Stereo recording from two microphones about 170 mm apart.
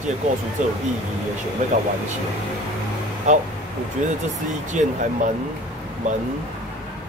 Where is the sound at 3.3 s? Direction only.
45° right (ahead or behind).